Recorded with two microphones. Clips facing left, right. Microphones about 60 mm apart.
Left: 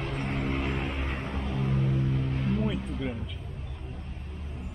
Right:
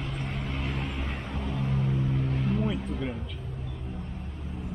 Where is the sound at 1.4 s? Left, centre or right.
Centre.